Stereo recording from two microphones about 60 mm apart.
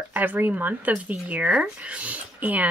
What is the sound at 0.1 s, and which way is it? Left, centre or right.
Speech, right.